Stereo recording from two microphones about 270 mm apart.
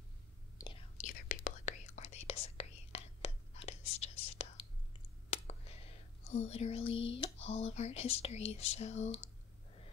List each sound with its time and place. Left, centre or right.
0.6 s whispering: centre
8.7 s speech: left